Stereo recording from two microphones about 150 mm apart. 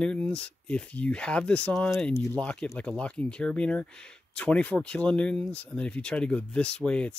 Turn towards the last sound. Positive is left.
turn(degrees=5)  # may be behind; listen again after turning